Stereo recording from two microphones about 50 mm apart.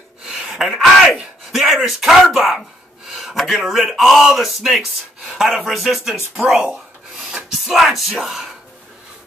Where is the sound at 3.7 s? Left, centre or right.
Centre.